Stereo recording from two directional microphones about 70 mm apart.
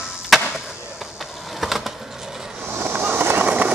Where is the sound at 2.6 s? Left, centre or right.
Right.